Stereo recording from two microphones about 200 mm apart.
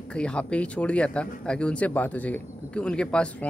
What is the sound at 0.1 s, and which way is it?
Speech, 5° left (ahead or behind).